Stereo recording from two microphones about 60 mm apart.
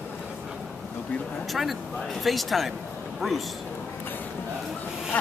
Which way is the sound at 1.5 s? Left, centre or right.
Centre.